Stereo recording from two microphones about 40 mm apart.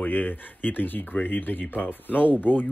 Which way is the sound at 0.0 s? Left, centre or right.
Left.